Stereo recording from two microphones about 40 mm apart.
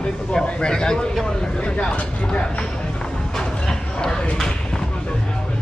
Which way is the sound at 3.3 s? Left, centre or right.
Centre.